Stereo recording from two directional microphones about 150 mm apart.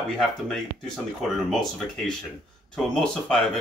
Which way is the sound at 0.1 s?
5° left (ahead or behind).